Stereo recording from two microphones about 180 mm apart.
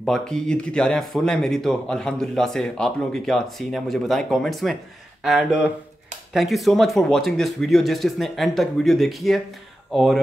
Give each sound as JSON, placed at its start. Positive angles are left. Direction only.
{"t": 0.0, "sound": "speech", "side_deg": 5}